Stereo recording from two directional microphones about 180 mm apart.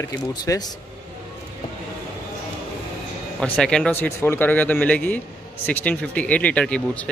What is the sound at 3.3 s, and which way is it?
Speech, 5° left (ahead or behind).